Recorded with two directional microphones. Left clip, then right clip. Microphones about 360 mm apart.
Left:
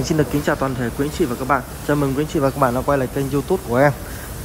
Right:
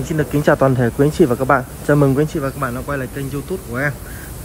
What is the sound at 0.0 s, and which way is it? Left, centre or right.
Speech, centre.